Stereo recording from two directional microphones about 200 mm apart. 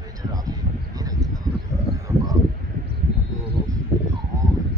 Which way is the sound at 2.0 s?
15° right (ahead or behind).